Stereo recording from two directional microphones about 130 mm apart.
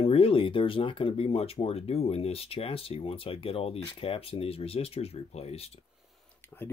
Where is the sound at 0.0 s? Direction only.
45° left (ahead or behind).